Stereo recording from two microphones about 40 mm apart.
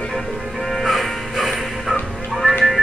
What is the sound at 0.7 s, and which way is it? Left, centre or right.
Music, centre.